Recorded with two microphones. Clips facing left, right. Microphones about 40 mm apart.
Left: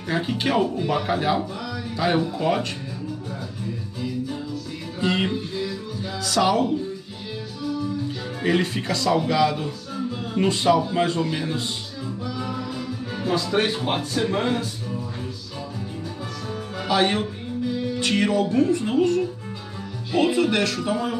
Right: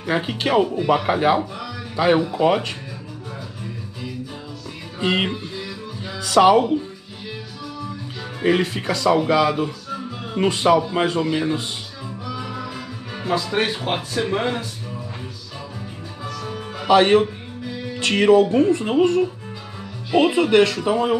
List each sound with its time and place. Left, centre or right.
0.0 s speech: right
1.0 s speech: right
5.0 s speech: right
6.2 s speech: right
8.4 s speech: centre
12.3 s music: centre
16.8 s speech: right